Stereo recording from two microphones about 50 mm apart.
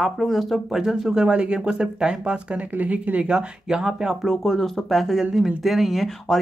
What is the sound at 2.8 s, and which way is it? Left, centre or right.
Speech, right.